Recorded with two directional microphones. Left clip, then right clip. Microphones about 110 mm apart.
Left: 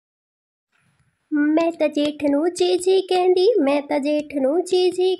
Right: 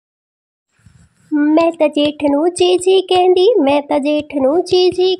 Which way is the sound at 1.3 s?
30° right (ahead or behind).